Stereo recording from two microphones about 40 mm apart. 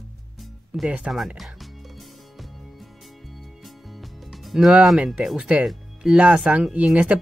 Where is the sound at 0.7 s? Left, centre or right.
Right.